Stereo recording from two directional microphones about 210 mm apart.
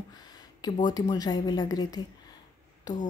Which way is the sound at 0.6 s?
20° left (ahead or behind).